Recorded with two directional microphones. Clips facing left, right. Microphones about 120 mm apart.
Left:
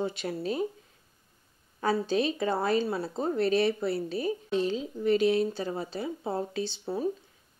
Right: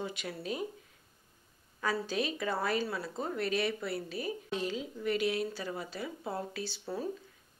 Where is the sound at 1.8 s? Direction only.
30° left (ahead or behind).